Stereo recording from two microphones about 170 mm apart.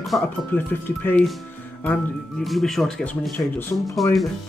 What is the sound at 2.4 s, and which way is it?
Speech, centre (ahead or behind).